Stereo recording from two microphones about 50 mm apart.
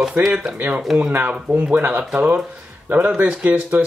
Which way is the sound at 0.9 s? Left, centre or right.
Centre.